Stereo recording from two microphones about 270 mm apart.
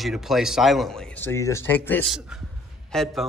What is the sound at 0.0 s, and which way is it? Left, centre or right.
Speech, centre.